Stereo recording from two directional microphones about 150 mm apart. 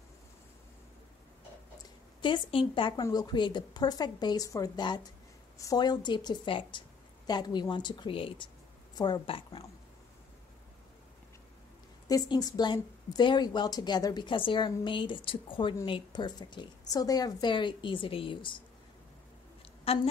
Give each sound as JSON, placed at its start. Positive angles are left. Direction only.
{"t": 2.2, "sound": "a woman's voice", "side_deg": 35}
{"t": 12.1, "sound": "a woman's voice", "side_deg": 25}
{"t": 19.9, "sound": "a woman's voice", "side_deg": 40}